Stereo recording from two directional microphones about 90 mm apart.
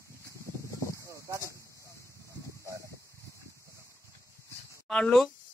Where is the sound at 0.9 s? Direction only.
35° right (ahead or behind).